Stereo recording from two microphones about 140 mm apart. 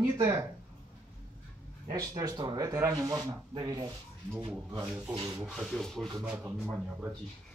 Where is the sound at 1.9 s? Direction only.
25° right (ahead or behind).